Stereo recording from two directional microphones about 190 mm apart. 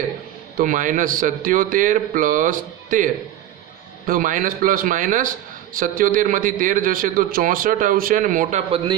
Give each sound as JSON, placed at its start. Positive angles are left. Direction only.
{"t": 0.6, "sound": "a man's voice", "side_deg": -45}